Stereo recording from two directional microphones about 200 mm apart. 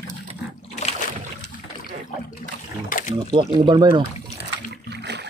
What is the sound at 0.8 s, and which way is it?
Boat, 35° left (ahead or behind).